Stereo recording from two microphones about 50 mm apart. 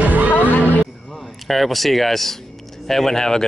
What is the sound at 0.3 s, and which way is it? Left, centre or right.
Music, left.